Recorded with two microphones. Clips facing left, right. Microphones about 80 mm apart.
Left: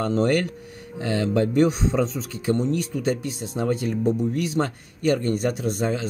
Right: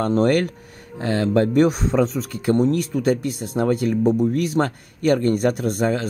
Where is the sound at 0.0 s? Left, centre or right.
Right.